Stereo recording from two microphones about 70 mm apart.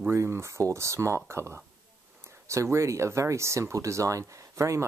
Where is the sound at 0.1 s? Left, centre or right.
Right.